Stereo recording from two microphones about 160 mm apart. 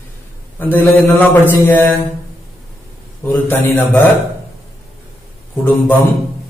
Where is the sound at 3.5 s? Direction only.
15° left (ahead or behind).